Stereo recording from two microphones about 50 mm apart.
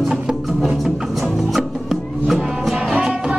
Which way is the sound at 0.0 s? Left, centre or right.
Centre.